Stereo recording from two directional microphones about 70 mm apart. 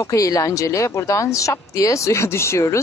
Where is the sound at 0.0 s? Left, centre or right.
Left.